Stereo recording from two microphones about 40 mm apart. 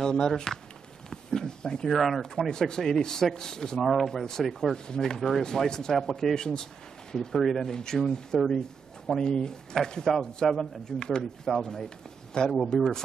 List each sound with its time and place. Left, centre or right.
0.0 s a man's voice: centre
1.9 s a man's voice: centre; by 12.5 s left